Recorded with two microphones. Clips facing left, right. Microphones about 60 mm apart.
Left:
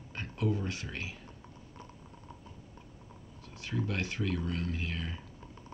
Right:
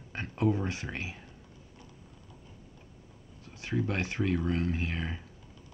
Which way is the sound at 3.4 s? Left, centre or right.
Right.